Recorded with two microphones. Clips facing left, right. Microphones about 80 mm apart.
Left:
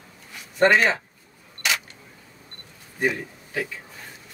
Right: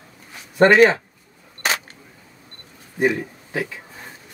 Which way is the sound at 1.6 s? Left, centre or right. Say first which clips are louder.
Right 3 dB; right.